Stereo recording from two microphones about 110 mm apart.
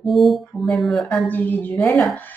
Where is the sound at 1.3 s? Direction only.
15° left (ahead or behind).